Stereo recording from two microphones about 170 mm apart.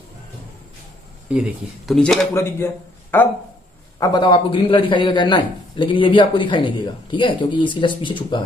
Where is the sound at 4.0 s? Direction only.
25° left (ahead or behind).